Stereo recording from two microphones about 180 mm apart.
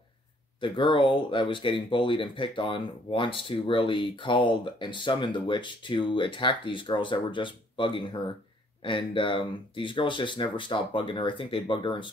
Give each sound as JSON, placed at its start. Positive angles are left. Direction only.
{"t": 0.6, "sound": "speech", "side_deg": 30}